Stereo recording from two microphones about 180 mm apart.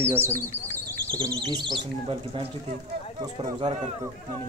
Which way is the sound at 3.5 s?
25° right (ahead or behind).